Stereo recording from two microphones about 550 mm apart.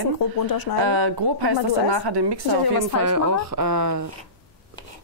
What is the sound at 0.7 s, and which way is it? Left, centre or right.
A woman's voice, right.